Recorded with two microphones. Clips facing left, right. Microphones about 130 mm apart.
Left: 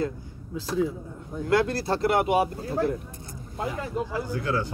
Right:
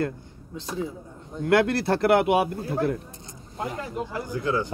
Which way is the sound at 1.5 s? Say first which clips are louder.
Right 3 dB; 65° right (ahead or behind).